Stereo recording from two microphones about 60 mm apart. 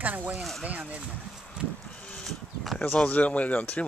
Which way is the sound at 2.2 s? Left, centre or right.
Centre.